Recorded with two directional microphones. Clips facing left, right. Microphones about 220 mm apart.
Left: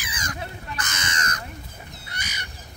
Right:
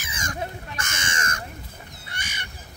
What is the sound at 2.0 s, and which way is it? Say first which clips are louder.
Goose: right 1 dB; 30° right (ahead or behind).